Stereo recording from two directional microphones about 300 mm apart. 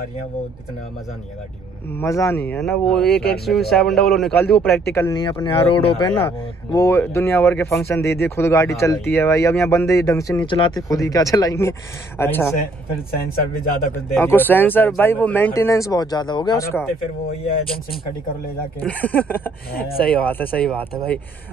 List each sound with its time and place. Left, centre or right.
1.9 s speech: centre
3.1 s speech: left
3.4 s a man's voice: centre
14.1 s speech: centre
18.8 s a man's voice: centre